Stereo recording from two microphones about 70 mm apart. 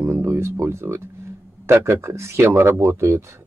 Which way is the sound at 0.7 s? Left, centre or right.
Right.